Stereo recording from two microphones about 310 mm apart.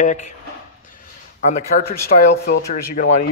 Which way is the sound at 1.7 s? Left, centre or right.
Left.